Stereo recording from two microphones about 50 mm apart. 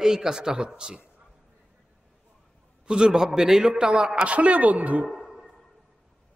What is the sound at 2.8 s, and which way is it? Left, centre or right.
A man's voice, centre.